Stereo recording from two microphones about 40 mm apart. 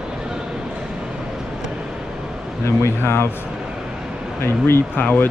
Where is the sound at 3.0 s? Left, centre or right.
Left.